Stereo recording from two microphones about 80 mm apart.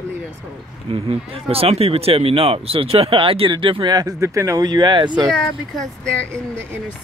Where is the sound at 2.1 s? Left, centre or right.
Right.